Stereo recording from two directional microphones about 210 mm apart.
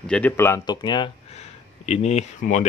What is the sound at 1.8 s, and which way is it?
Speech, 30° left (ahead or behind).